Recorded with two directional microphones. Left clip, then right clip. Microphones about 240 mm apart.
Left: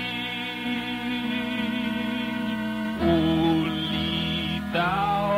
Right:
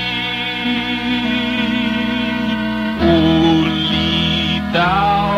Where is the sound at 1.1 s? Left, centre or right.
Centre.